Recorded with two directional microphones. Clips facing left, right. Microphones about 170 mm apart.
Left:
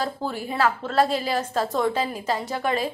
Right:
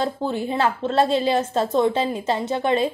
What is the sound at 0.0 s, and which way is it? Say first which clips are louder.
A woman's voice: right 4 dB; 25° right (ahead or behind).